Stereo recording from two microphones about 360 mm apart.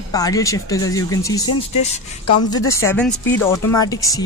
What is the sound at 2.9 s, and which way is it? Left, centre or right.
Speech, centre.